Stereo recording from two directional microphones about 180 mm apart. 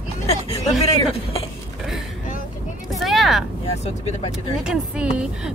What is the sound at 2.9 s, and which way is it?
Vehicle, centre (ahead or behind).